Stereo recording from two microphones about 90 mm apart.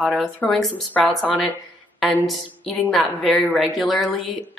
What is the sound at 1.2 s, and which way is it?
Speech, 15° left (ahead or behind).